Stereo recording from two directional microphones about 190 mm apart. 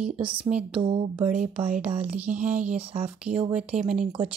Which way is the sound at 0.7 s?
30° right (ahead or behind).